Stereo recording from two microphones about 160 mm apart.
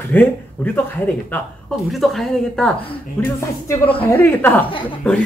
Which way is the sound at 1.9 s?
Centre (ahead or behind).